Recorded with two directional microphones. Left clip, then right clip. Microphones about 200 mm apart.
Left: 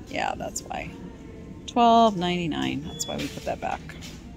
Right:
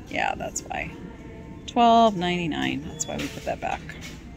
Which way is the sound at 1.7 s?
10° left (ahead or behind).